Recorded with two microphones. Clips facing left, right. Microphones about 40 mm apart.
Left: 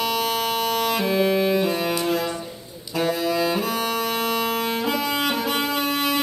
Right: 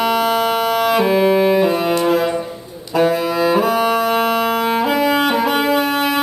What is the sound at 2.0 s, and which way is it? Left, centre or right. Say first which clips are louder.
Music: right 8 dB; centre.